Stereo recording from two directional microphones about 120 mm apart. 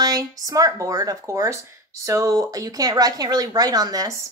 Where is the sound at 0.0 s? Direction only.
30° right (ahead or behind).